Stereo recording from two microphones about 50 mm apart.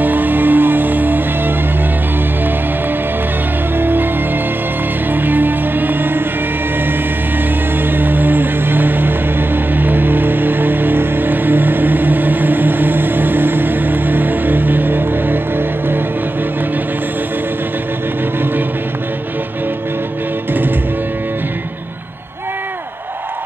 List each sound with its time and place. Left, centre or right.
0.0 s music: right
3.7 s music: right
5.1 s music: right
7.8 s music: right